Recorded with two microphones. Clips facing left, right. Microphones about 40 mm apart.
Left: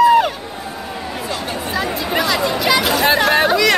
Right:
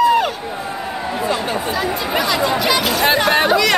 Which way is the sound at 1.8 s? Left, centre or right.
Centre.